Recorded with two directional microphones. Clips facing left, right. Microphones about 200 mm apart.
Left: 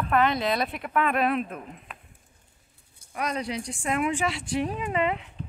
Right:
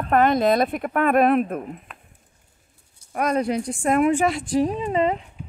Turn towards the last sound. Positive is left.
turn(degrees=-35)  # may be behind; listen again after turning